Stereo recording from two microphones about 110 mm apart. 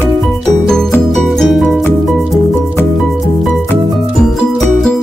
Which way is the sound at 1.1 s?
Centre (ahead or behind).